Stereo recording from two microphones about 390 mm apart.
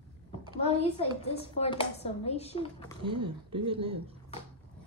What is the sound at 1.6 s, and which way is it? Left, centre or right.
Speech, centre.